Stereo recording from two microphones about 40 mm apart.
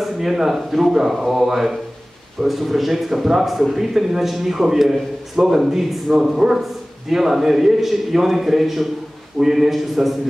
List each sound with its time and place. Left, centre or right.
0.0 s a man's voice: centre